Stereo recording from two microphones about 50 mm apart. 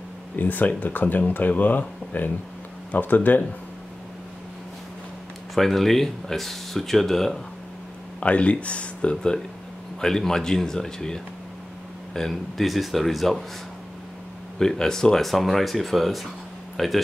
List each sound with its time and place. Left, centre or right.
0.4 s speech: left
5.5 s speech: centre
8.2 s a man's voice: left; by 13.4 s centre
14.6 s speech: centre